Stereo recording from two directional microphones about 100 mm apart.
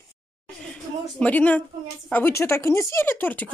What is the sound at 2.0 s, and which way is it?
Speech, 20° left (ahead or behind).